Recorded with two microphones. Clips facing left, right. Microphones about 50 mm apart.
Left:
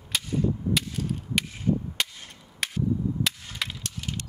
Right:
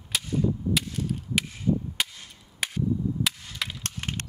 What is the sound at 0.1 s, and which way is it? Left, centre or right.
Cap gun, centre.